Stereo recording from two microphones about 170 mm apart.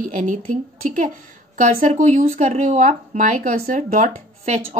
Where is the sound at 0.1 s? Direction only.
50° right (ahead or behind).